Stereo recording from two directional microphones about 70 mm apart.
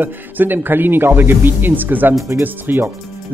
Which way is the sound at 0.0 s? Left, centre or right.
Right.